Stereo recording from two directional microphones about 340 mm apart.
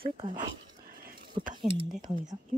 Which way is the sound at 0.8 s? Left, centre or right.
Right.